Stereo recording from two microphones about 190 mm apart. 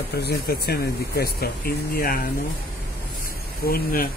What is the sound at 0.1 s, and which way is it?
Speech, 55° left (ahead or behind).